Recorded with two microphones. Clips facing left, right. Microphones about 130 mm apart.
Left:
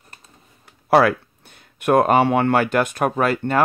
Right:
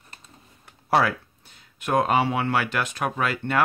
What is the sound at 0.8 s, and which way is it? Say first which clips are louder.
Speech: left 6 dB; 60° left (ahead or behind).